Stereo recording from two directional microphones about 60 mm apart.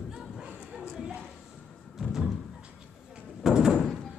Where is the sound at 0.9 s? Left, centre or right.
Centre.